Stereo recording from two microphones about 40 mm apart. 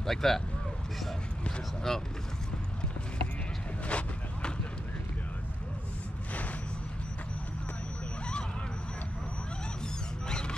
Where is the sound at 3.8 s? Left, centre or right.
Left.